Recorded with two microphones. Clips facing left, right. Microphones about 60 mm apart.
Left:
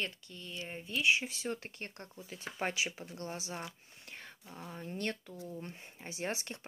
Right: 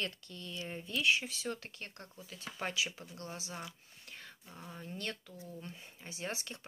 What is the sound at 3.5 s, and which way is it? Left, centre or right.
Whispering, left.